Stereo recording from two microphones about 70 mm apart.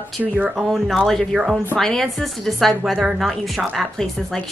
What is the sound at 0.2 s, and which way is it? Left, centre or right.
Speech, centre.